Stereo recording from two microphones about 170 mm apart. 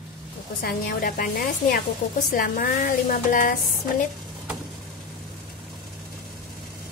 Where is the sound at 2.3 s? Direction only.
55° left (ahead or behind).